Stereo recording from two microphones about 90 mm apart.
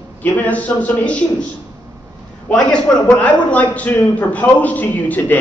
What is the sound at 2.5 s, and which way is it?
A man's voice, 15° left (ahead or behind).